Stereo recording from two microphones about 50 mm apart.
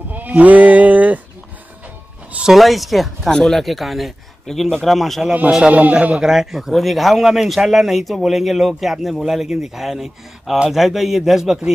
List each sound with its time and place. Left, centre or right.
0.3 s music: right
2.5 s a man's voice: centre
3.3 s a man's voice: centre
5.6 s a man's voice: right
6.1 s a man's voice: centre